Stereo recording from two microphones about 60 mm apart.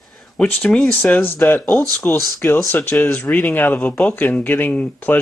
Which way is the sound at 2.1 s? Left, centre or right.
Left.